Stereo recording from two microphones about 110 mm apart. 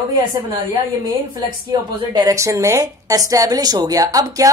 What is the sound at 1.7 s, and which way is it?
A woman's voice, 40° right (ahead or behind).